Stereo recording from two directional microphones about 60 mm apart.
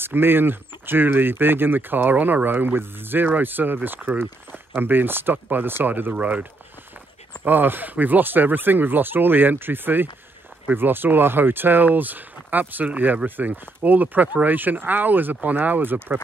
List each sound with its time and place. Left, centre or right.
0.0 s speech: right
7.4 s speech: right